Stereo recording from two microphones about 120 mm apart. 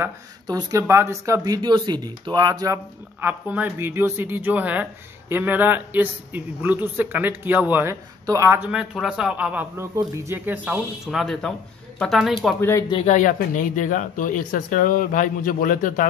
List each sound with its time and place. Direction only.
0.5 s speech: 30° right (ahead or behind)
3.2 s a man's voice: 15° right (ahead or behind)
8.6 s a man's voice: 5° right (ahead or behind)
9.8 s speech: 25° right (ahead or behind)
11.1 s speech: centre (ahead or behind)
12.5 s speech: 20° left (ahead or behind)
13.0 s speech: 85° left